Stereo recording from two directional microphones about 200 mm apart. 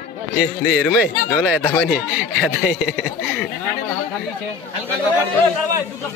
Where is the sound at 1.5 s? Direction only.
5° left (ahead or behind).